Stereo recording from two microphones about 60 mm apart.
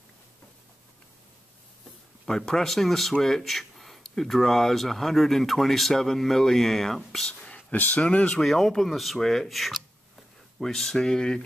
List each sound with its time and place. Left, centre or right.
2.2 s speech: centre
7.2 s a sound: centre
7.7 s speech: left
8.4 s speech: centre